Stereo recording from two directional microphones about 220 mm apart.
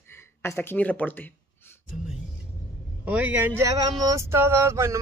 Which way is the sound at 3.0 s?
5° right (ahead or behind).